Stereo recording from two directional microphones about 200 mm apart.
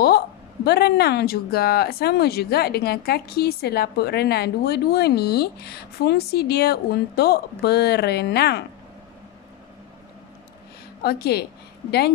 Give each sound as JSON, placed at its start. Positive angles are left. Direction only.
{"t": 0.7, "sound": "speech", "side_deg": 55}
{"t": 11.0, "sound": "speech", "side_deg": 50}